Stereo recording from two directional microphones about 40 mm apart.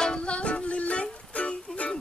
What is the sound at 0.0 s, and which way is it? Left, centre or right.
Music, left.